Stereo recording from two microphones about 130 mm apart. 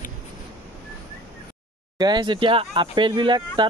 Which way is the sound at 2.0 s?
35° right (ahead or behind).